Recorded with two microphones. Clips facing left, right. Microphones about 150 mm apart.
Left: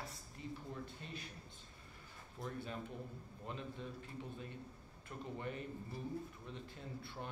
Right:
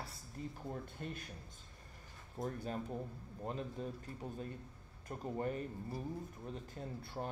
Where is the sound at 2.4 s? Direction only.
40° right (ahead or behind).